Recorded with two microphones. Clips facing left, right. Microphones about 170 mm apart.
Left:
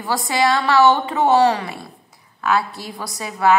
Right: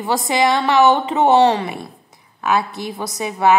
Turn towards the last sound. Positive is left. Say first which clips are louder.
# right 2 dB
turn(degrees=-20)  # may be behind; listen again after turning